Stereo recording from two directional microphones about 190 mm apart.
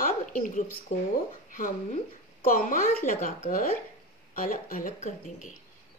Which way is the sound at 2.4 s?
45° left (ahead or behind).